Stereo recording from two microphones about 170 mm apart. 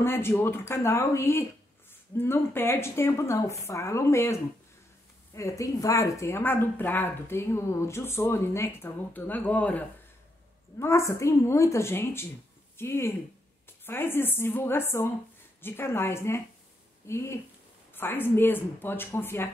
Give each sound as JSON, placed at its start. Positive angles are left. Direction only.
{"t": 0.0, "sound": "speech", "side_deg": 15}